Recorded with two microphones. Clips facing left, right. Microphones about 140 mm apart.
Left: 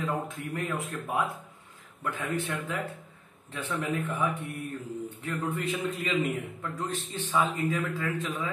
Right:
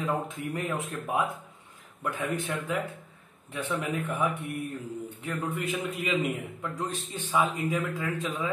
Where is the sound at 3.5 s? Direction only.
10° right (ahead or behind).